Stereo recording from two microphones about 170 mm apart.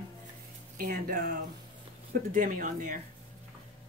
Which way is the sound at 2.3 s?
50° right (ahead or behind).